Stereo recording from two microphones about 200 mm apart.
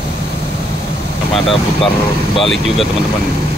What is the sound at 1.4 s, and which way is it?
Speech, 25° left (ahead or behind).